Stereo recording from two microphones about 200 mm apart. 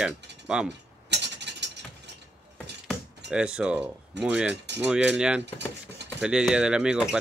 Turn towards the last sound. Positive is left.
turn(degrees=-5)  # may be behind; listen again after turning